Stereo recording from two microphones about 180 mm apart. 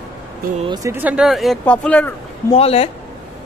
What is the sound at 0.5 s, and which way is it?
Speech, 25° right (ahead or behind).